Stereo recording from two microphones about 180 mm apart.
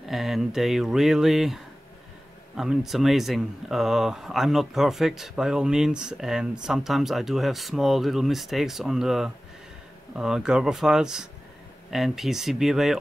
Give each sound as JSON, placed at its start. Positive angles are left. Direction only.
{"t": 0.0, "sound": "speech", "side_deg": 0}